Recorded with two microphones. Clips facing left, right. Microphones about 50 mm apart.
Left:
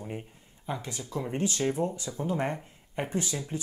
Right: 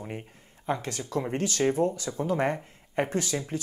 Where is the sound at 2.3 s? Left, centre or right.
Right.